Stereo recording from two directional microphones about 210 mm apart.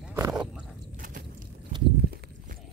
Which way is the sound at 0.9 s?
40° right (ahead or behind).